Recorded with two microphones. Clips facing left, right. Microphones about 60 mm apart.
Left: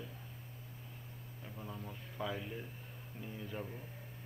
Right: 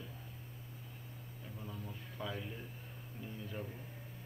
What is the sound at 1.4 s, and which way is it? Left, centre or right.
Speech, centre.